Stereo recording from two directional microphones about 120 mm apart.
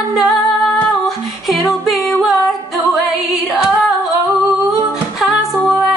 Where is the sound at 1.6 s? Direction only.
Centre (ahead or behind).